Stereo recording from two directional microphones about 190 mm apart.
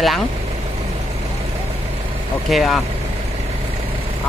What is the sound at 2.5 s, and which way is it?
Speech, centre (ahead or behind).